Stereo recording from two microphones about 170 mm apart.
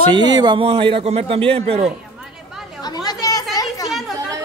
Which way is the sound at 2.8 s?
25° left (ahead or behind).